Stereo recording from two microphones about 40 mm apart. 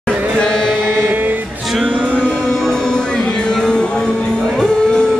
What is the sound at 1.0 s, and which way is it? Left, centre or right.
Music, right.